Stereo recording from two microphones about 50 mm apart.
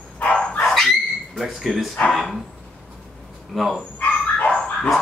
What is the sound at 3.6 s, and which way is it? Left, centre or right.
Speech, centre.